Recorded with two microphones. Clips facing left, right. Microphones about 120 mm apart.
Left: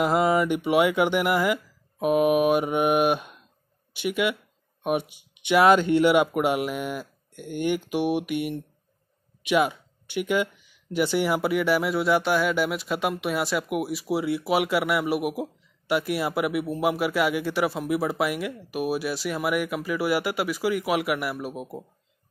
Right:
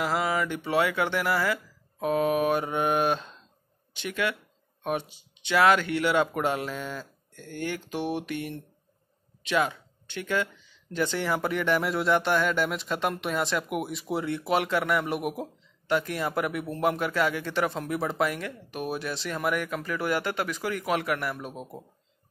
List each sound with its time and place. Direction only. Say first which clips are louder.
0.0 s speech: left 6 dB; 20° left (ahead or behind)